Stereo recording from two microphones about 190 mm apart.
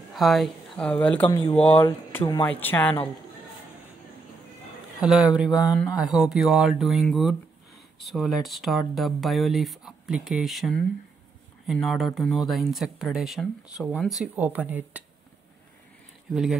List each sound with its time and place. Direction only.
0.1 s a woman's voice: centre (ahead or behind); by 1.5 s 15° left (ahead or behind)
1.5 s speech: 35° left (ahead or behind)
1.8 s speech: 10° left (ahead or behind)
5.0 s speech: 5° right (ahead or behind)